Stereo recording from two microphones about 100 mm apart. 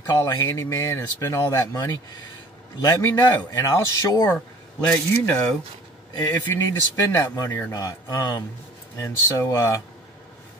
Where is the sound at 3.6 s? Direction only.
35° left (ahead or behind).